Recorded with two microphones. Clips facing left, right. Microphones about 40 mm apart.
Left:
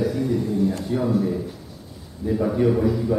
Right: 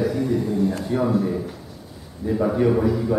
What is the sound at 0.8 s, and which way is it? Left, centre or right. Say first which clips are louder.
Speech: right 1 dB; centre.